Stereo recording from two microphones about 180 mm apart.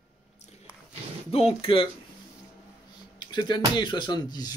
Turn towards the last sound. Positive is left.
turn(degrees=20)  # may be behind; listen again after turning